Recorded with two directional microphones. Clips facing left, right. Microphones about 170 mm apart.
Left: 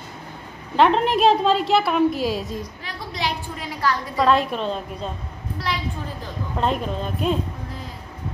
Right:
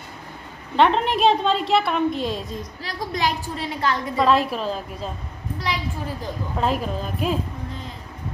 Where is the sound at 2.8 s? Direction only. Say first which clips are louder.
Right 7 dB; 45° right (ahead or behind).